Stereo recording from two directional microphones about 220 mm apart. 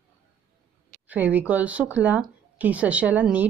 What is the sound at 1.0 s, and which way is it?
Speech, 5° right (ahead or behind).